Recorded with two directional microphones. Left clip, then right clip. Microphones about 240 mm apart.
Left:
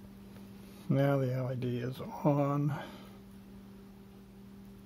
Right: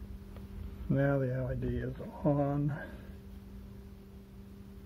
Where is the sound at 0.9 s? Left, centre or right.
Left.